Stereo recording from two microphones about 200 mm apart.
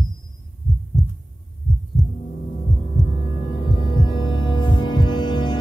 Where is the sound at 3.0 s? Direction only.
25° left (ahead or behind).